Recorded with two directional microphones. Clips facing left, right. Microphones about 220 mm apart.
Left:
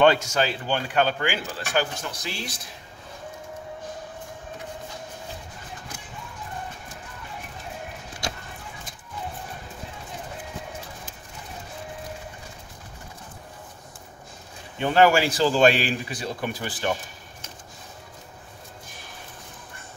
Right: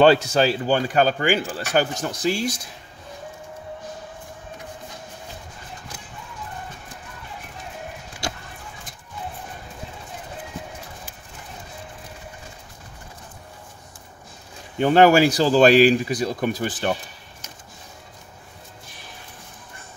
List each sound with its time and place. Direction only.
0.0 s speech: 35° right (ahead or behind)
14.8 s speech: 40° right (ahead or behind)